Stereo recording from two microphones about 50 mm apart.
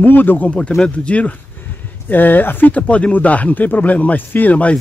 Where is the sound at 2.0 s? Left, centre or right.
Left.